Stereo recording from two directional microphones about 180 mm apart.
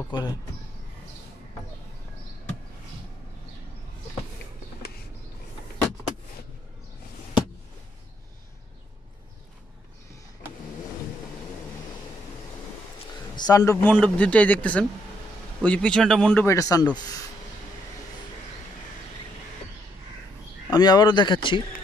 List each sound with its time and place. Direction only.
0.1 s a man's voice: 25° left (ahead or behind)
13.4 s a man's voice: 20° left (ahead or behind)
13.9 s a man's voice: 5° left (ahead or behind)
16.4 s a man's voice: 20° left (ahead or behind)
20.7 s a man's voice: 20° left (ahead or behind)